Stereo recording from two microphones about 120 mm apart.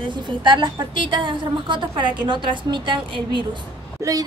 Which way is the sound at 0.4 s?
40° right (ahead or behind).